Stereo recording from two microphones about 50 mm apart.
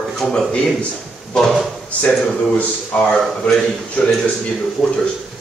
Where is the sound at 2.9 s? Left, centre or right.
Centre.